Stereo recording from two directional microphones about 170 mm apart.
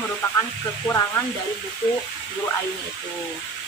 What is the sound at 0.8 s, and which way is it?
Speech, 15° left (ahead or behind).